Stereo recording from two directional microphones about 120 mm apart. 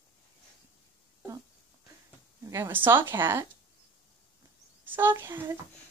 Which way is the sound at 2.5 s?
20° right (ahead or behind).